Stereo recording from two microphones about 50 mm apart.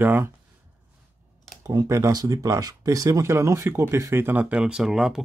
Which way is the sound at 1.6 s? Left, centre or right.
Right.